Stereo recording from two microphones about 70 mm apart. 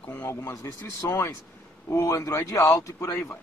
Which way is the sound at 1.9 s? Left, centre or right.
Left.